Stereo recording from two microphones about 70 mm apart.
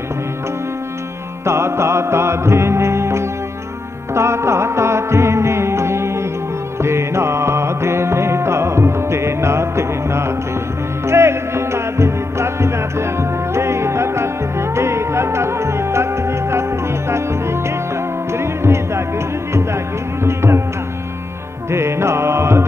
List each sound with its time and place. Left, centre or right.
1.4 s music: right
20.2 s music: right
21.6 s music: right